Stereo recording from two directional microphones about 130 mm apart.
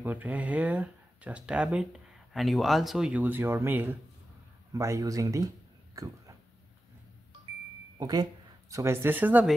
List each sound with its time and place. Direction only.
0.0 s speech: 15° right (ahead or behind); by 6.1 s 30° right (ahead or behind)
8.0 s speech: 30° right (ahead or behind); by 9.5 s 15° right (ahead or behind)